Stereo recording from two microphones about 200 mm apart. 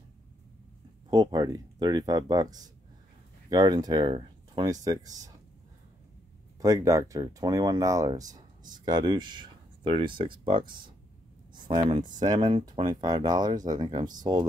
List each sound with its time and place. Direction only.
1.1 s speech: 20° right (ahead or behind)
6.6 s speech: 15° right (ahead or behind)